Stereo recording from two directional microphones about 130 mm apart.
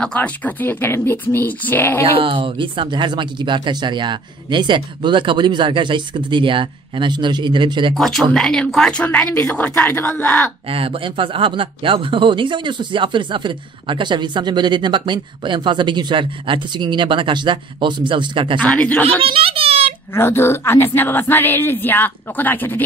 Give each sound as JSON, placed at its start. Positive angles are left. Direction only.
{"t": 0.0, "sound": "speech", "side_deg": 10}
{"t": 2.1, "sound": "speech", "side_deg": -40}
{"t": 7.9, "sound": "speech", "side_deg": 0}
{"t": 10.7, "sound": "speech", "side_deg": -45}
{"t": 18.6, "sound": "speech", "side_deg": 10}
{"t": 19.2, "sound": "a sound", "side_deg": -45}
{"t": 20.2, "sound": "speech", "side_deg": 15}